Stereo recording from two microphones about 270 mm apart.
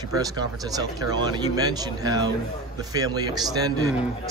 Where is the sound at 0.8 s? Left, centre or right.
Centre.